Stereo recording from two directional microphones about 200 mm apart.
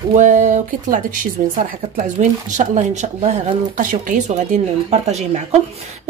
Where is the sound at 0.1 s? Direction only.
35° right (ahead or behind).